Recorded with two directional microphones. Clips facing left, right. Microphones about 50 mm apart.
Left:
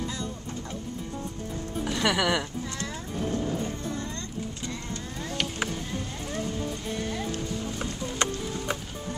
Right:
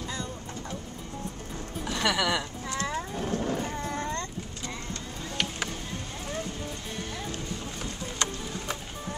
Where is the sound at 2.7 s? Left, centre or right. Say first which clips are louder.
Right 4 dB; right.